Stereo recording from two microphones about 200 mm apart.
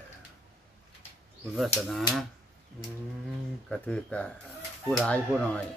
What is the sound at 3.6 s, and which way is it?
Speech, 5° left (ahead or behind).